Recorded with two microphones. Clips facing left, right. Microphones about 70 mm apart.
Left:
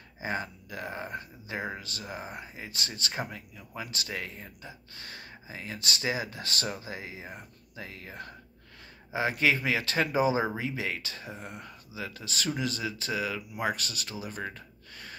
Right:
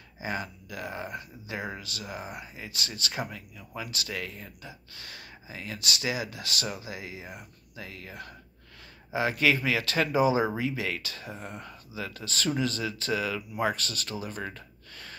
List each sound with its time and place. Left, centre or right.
0.2 s speech: left; by 14.1 s centre
14.2 s gasp: centre